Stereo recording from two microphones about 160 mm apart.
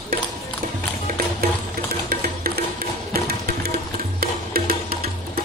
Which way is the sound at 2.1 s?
70° right (ahead or behind).